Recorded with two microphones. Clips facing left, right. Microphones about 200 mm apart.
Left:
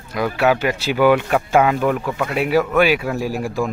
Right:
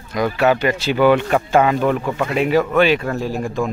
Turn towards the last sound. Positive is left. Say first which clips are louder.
# even
turn(degrees=5)  # may be behind; listen again after turning